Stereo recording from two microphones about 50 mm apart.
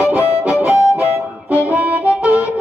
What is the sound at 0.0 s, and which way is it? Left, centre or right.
Harmonica, right.